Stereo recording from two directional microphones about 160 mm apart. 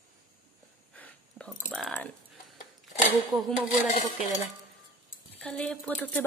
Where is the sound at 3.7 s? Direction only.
50° left (ahead or behind).